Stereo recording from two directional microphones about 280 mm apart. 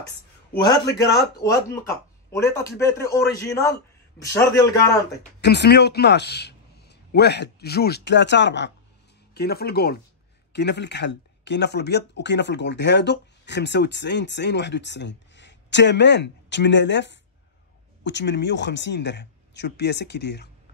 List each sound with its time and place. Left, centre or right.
0.0 s a sound: centre
1.4 s a man's voice: centre
5.4 s speech: left